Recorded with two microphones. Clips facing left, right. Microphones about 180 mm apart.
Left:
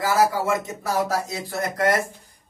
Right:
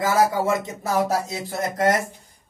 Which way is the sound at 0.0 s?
20° right (ahead or behind).